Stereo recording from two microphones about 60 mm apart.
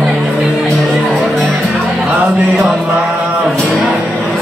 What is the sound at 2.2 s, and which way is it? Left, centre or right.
Music, right.